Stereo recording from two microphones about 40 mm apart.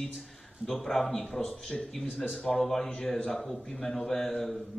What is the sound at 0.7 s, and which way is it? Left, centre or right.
A man's voice, centre.